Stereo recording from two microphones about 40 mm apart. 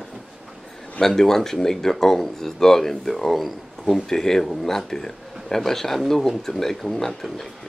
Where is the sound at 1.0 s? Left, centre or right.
Centre.